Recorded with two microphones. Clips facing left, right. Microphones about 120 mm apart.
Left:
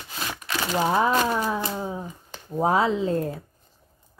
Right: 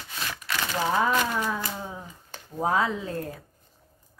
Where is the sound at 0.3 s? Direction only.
20° left (ahead or behind).